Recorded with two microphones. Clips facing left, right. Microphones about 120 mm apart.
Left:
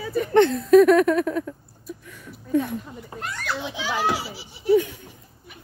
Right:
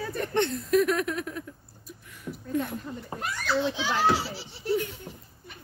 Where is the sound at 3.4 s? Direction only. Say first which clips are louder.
Right 3 dB; 10° left (ahead or behind).